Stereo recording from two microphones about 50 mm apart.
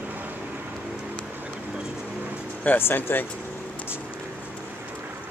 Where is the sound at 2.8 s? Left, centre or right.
Left.